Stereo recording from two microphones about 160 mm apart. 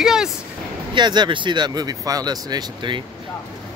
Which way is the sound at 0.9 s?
25° right (ahead or behind).